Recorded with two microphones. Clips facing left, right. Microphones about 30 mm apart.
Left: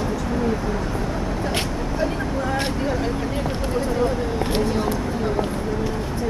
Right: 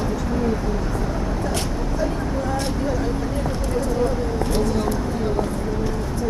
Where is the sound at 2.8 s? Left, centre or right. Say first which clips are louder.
Even; left.